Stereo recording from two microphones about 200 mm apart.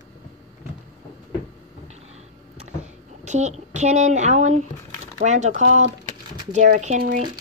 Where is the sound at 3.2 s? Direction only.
35° right (ahead or behind).